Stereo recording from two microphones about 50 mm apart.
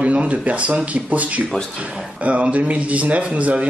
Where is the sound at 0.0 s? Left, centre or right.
Right.